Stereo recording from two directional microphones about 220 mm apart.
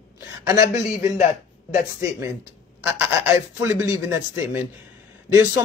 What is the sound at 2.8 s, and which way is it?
Speech, 10° right (ahead or behind).